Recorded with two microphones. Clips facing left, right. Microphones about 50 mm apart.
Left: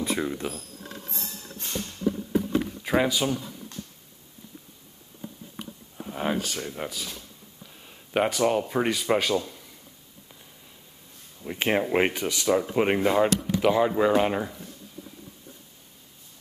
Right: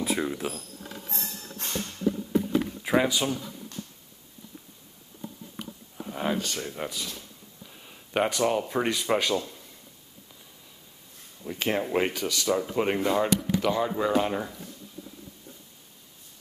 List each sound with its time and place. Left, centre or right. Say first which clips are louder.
0.0 s speech: even; centre
2.8 s speech: left 1 dB; centre
5.6 s a sound: even; centre
7.8 s speech: left 1 dB; centre
11.4 s speech: left 3 dB; left